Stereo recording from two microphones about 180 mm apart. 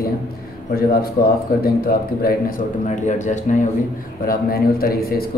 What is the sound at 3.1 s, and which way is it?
Speech, 40° left (ahead or behind).